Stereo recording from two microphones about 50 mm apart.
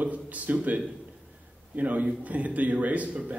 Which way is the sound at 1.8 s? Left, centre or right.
Right.